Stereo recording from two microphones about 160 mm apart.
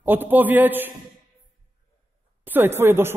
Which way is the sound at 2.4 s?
10° right (ahead or behind).